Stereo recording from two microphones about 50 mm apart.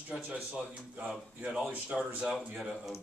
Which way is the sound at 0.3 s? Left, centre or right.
Right.